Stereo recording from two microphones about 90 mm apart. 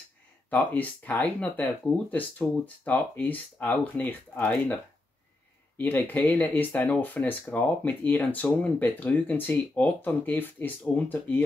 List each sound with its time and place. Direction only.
0.5 s speech: 20° left (ahead or behind)
5.8 s speech: 20° left (ahead or behind)